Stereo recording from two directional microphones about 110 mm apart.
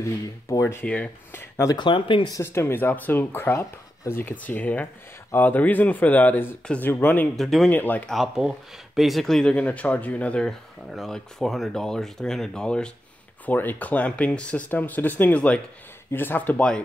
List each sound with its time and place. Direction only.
0.0 s speech: 25° left (ahead or behind)
0.8 s speech: 10° left (ahead or behind)
1.7 s speech: 45° left (ahead or behind)
2.4 s speech: 25° left (ahead or behind)
7.3 s speech: centre (ahead or behind)
7.7 s speech: 15° left (ahead or behind)
8.1 s speech: 5° right (ahead or behind)